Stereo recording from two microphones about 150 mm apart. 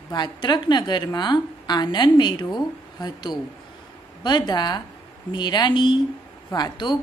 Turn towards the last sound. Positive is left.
turn(degrees=30)  # may be behind; listen again after turning